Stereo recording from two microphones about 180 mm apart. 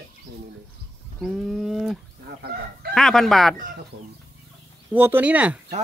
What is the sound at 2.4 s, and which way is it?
Fowl, 60° right (ahead or behind).